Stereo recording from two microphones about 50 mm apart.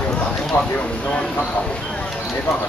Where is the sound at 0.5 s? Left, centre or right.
Left.